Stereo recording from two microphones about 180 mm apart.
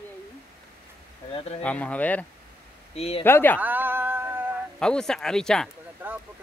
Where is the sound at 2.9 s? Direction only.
35° left (ahead or behind).